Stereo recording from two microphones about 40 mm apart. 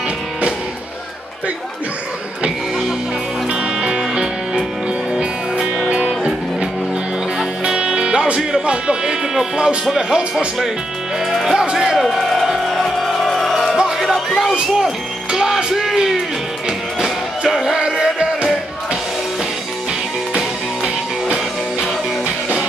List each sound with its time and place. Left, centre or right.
3.4 s music: right
9.0 s speech: centre
9.8 s music: centre
11.2 s music: centre
11.7 s a sound: centre
12.2 s a sound: centre
12.5 s music: centre
17.4 s music: centre
20.3 s music: centre